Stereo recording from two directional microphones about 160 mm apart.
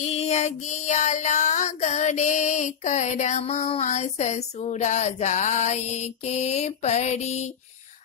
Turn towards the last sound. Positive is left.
turn(degrees=45)  # may be behind; listen again after turning